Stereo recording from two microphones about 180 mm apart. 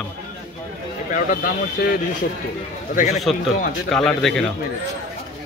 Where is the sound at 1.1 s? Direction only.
50° left (ahead or behind).